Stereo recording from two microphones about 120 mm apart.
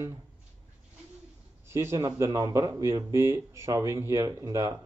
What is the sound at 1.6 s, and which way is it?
Speech, 20° right (ahead or behind).